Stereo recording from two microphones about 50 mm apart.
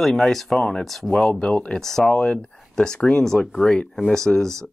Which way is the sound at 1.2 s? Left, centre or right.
Centre.